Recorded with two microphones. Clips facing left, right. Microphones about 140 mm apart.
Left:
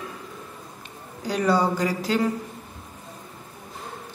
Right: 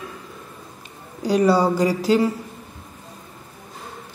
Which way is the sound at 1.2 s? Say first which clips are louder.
Right 5 dB; 10° right (ahead or behind).